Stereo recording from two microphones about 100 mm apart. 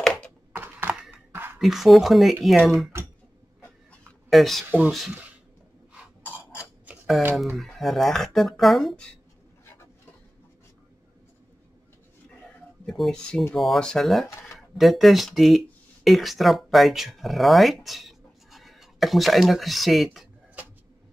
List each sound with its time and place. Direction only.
0.0 s typing: 5° left (ahead or behind)
0.5 s typing: 20° right (ahead or behind)
1.1 s a sound: 20° right (ahead or behind)
1.6 s speech: centre (ahead or behind)
4.3 s speech: centre (ahead or behind)
4.6 s speech: 15° right (ahead or behind)
6.2 s a sound: 20° left (ahead or behind)
7.3 s speech: centre (ahead or behind)
12.8 s speech: centre (ahead or behind)